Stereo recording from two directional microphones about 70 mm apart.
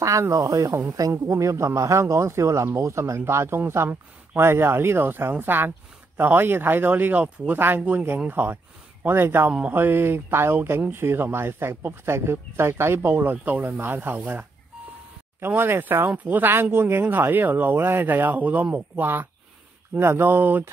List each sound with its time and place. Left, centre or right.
0.0 s a man's voice: right
15.4 s speech: right